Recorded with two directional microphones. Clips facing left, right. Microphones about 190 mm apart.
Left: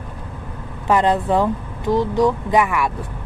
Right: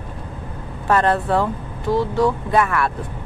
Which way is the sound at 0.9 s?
15° left (ahead or behind).